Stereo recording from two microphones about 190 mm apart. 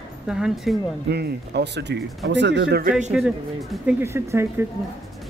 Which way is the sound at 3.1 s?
5° right (ahead or behind).